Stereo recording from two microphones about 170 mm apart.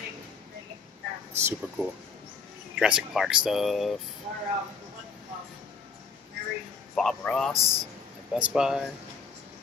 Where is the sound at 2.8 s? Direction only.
5° right (ahead or behind).